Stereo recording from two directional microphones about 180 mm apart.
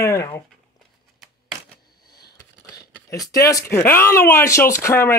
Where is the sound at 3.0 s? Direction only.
20° left (ahead or behind).